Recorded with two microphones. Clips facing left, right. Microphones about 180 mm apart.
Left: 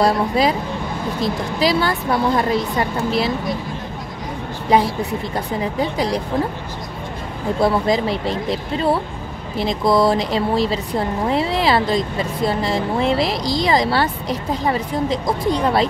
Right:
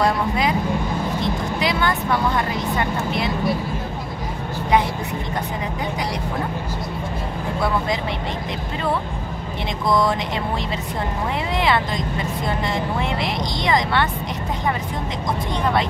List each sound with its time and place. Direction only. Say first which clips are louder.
0.0 s speech: left 4 dB; 35° left (ahead or behind)
5.6 s speech: left 5 dB; 30° left (ahead or behind)
7.6 s speech: left 6 dB; 35° left (ahead or behind)